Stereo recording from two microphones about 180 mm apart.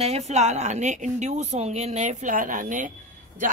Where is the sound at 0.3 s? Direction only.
40° right (ahead or behind).